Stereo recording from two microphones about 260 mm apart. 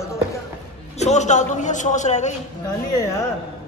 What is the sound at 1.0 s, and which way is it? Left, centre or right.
A man's voice, left.